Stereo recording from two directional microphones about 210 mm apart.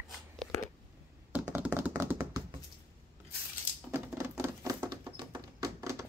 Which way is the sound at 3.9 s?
10° right (ahead or behind).